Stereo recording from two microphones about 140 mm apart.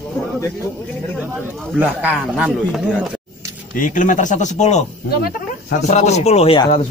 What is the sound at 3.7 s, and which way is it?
Speech, 65° left (ahead or behind).